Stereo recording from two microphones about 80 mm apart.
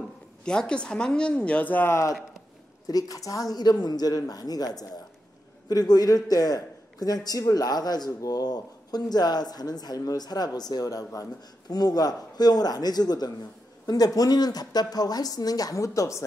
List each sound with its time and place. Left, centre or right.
0.5 s a woman's voice: centre
1.9 s speech: left
2.9 s a man's voice: left